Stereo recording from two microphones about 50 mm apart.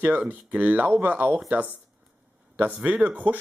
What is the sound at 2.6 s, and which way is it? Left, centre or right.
Speech, right.